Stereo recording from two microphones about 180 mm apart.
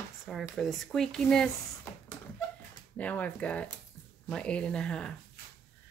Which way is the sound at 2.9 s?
10° left (ahead or behind).